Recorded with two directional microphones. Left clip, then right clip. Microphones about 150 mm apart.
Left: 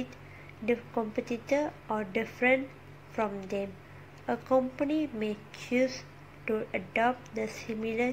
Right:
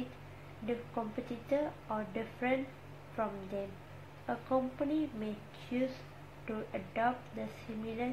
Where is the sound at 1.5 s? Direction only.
45° left (ahead or behind).